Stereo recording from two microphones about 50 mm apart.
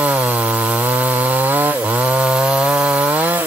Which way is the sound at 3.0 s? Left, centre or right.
Right.